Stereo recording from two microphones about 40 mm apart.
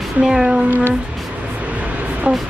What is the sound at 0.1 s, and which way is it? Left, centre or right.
Speech, right.